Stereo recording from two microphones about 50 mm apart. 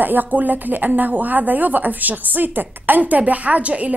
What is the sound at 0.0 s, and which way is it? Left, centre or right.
A woman's voice, right.